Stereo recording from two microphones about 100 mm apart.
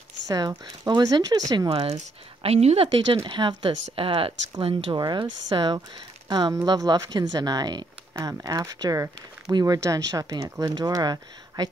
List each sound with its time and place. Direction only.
0.3 s speech: 40° right (ahead or behind)
1.7 s speech: 70° right (ahead or behind)
2.4 s speech: 90° right
3.3 s speech: 50° right (ahead or behind)
5.0 s speech: 50° right (ahead or behind)